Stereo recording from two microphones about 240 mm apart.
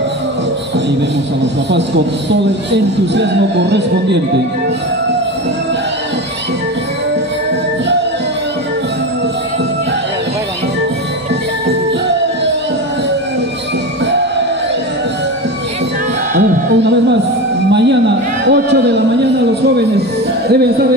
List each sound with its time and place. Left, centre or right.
1.4 s a man's voice: right
16.3 s a sound: right
17.6 s music: right
18.5 s a man's voice: right